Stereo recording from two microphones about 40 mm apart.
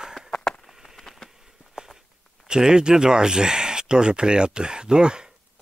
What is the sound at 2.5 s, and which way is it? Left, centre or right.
Speech, centre.